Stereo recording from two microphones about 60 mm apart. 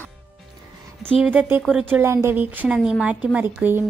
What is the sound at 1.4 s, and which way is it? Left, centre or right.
Speech, right.